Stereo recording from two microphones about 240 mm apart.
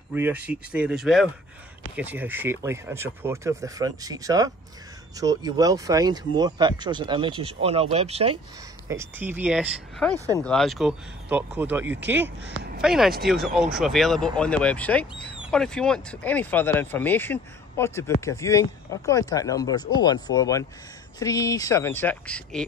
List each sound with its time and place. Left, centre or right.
0.1 s speech: centre; by 8.4 s right
8.8 s speech: centre
10.1 s speech: centre
10.4 s speech: centre